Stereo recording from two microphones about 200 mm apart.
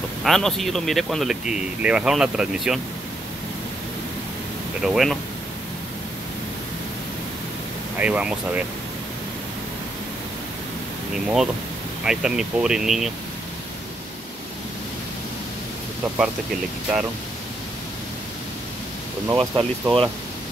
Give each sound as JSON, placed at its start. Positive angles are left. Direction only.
{"t": 0.2, "sound": "speech", "side_deg": 0}
{"t": 4.8, "sound": "speech", "side_deg": 0}
{"t": 8.0, "sound": "speech", "side_deg": -5}
{"t": 12.0, "sound": "speech", "side_deg": -5}
{"t": 19.2, "sound": "speech", "side_deg": -20}